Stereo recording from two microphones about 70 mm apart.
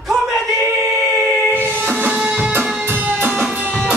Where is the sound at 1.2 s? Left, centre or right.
Right.